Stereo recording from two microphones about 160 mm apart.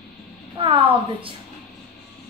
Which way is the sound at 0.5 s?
35° right (ahead or behind).